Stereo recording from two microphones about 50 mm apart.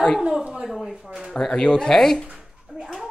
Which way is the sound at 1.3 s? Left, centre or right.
Centre.